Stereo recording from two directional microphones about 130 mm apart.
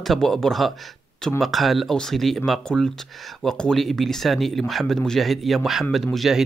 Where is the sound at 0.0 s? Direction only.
Centre (ahead or behind).